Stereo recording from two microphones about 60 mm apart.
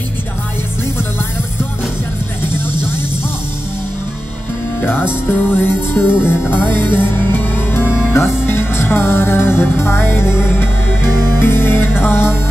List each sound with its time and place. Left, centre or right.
4.7 s music: left
11.1 s music: right
11.3 s music: left